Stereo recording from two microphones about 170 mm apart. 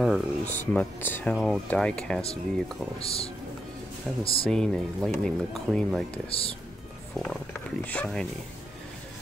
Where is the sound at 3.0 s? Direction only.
35° left (ahead or behind).